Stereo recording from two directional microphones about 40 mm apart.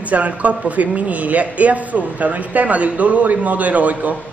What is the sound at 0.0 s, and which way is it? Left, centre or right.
A man's voice, right.